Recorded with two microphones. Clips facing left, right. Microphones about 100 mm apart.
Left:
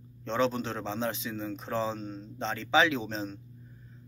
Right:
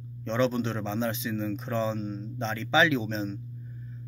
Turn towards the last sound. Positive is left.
turn(degrees=35)  # may be behind; listen again after turning